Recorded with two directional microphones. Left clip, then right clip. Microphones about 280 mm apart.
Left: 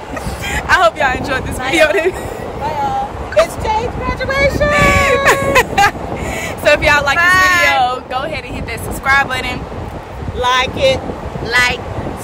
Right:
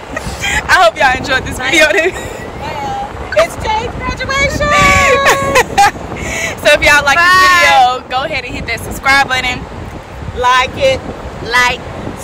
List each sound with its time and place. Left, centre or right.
0.1 s vehicle: centre
4.1 s speech: centre
7.2 s speech: centre
7.7 s speech: centre
11.5 s speech: centre